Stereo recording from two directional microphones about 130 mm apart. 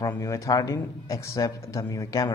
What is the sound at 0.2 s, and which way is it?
Speech, 25° left (ahead or behind).